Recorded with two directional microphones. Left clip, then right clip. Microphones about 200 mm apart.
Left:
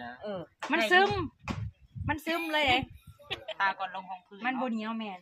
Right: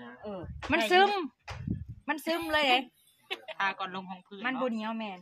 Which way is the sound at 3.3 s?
15° right (ahead or behind).